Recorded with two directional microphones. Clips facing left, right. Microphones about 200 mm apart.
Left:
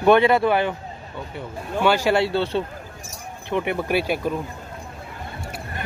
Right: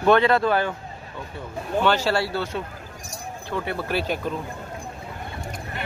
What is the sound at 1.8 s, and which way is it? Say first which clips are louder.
Speech: left 3 dB; 10° left (ahead or behind).